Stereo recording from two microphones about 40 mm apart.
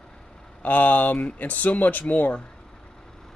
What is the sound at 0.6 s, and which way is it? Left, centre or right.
Speech, left.